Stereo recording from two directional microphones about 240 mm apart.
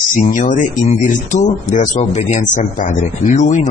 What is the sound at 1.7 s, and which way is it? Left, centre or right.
Speech, left.